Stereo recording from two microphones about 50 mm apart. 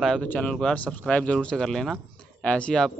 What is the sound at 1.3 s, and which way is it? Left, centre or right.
A man's voice, centre.